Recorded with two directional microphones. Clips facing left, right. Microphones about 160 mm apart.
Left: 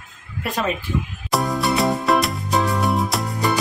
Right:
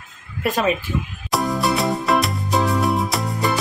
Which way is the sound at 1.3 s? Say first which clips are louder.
Even; centre (ahead or behind).